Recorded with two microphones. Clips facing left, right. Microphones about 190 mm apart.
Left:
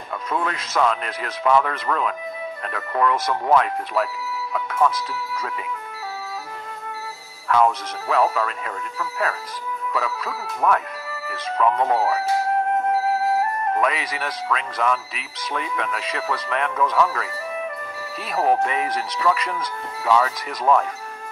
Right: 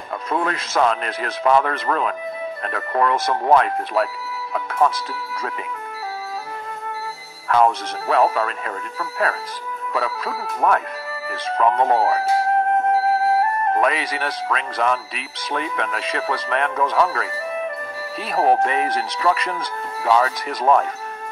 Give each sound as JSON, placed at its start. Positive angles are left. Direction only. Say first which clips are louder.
{"t": 0.1, "sound": "music", "louder": "right 3 dB", "side_deg": -40}
{"t": 0.6, "sound": "speech", "louder": "right 2 dB", "side_deg": -40}
{"t": 7.4, "sound": "speech", "louder": "right 2 dB", "side_deg": -40}
{"t": 13.7, "sound": "speech", "louder": "right 3 dB", "side_deg": -40}
{"t": 18.3, "sound": "speech", "louder": "right 3 dB", "side_deg": -40}